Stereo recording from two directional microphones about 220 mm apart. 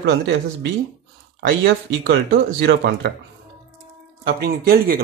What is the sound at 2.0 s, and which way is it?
Speech, 50° right (ahead or behind).